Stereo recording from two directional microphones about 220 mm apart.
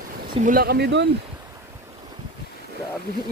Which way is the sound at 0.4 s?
40° right (ahead or behind).